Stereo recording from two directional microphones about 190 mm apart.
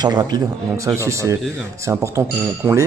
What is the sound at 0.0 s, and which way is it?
Speech, 20° right (ahead or behind).